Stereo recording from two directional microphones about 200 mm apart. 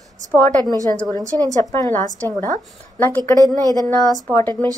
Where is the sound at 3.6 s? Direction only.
20° right (ahead or behind).